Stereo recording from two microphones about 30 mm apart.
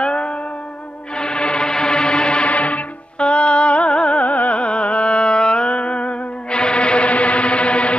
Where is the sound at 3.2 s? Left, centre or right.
Left.